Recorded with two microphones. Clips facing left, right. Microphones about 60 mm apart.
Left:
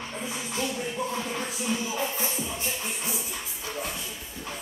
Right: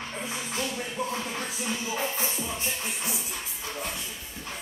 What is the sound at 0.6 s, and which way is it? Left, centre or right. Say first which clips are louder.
Music: left 2 dB; centre.